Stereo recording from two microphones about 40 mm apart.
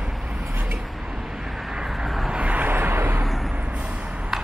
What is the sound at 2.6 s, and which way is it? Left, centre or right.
Vehicle, right.